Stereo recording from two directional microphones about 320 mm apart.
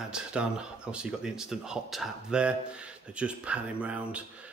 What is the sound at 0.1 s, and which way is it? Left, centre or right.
Speech, centre.